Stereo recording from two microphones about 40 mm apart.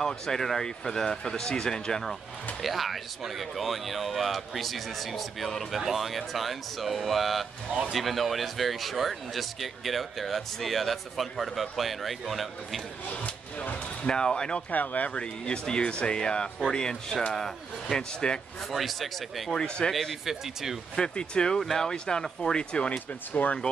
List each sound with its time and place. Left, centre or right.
0.0 s speech: centre
2.6 s speech: centre
13.1 s speech: left
14.0 s speech: centre
14.7 s speech: left
15.0 s speech: left
18.7 s speech: centre
19.5 s speech: left
19.9 s speech: centre
20.9 s speech: centre; by 23.5 s left